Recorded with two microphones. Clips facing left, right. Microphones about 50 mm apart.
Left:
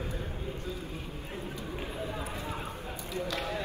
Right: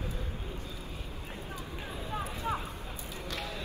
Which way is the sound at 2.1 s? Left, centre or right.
Right.